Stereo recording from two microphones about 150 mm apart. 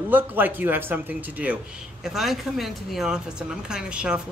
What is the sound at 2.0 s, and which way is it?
A woman's voice, centre (ahead or behind).